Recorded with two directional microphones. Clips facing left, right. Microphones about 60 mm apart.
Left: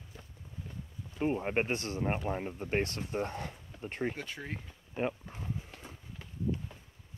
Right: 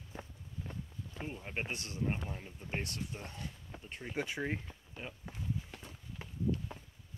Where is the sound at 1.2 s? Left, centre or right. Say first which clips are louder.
Left 11 dB; left.